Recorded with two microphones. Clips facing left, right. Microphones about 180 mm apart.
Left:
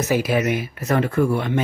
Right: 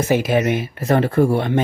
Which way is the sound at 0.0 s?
25° right (ahead or behind).